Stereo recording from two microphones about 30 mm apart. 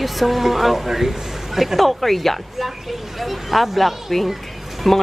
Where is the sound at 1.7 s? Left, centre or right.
Centre.